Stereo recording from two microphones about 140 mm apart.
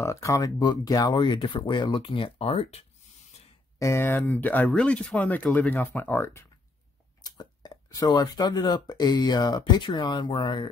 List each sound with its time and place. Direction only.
0.0 s speech: 20° left (ahead or behind); by 2.8 s 45° left (ahead or behind)
3.8 s speech: 20° left (ahead or behind)
7.2 s speech: 25° left (ahead or behind)